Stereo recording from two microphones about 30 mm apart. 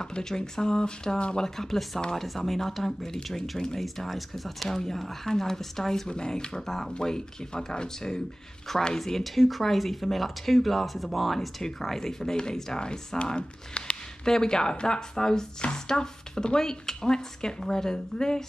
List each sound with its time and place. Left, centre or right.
0.0 s a woman's voice: centre
1.1 s speech: left
1.4 s speech: centre
3.3 s speech: centre
3.5 s a woman's voice: left
3.8 s speech: centre
4.6 s speech: centre
6.0 s a woman's voice: left
6.6 s speech: centre
6.9 s a woman's voice: left
8.9 s speech: centre
12.0 s a woman's voice: centre
13.4 s speech: left
14.2 s a woman's voice: left